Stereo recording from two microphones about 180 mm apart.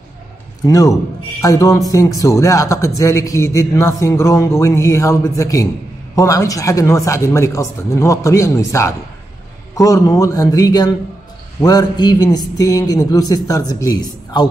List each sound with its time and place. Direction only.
0.7 s speech: 20° left (ahead or behind)